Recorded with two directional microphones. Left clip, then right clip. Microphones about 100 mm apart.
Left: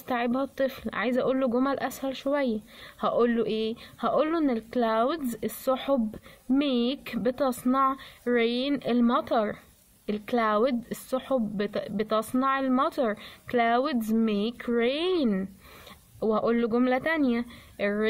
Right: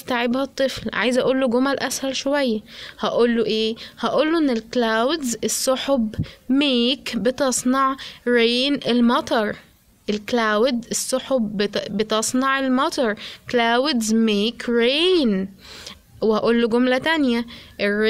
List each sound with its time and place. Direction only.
0.1 s speech: 30° right (ahead or behind)